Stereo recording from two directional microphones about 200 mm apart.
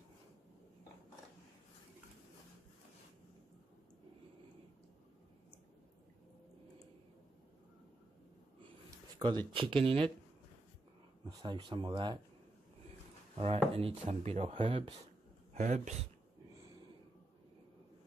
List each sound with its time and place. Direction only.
9.5 s speech: 25° right (ahead or behind)
11.2 s speech: 20° right (ahead or behind)
13.4 s speech: 30° right (ahead or behind)